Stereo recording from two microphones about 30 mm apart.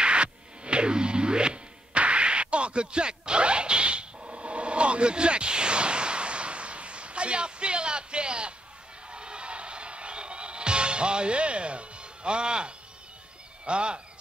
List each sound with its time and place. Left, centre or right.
0.0 s music: right
13.7 s bird: right